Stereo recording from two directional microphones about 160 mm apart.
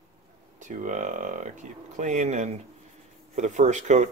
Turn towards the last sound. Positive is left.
turn(degrees=-50)  # may be behind; listen again after turning